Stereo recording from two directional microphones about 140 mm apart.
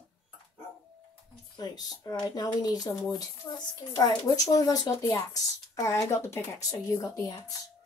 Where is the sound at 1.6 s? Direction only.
25° left (ahead or behind).